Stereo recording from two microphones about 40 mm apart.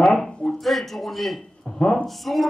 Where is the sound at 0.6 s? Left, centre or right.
Centre.